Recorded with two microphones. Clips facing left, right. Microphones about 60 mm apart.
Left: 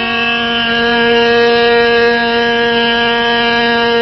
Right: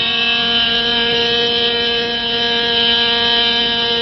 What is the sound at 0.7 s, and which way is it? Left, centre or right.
Music, left.